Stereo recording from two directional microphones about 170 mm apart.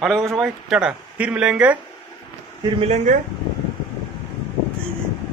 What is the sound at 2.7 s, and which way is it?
Speech, 40° right (ahead or behind).